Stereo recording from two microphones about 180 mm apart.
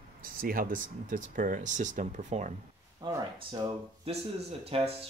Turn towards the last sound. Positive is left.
turn(degrees=-30)  # may be behind; listen again after turning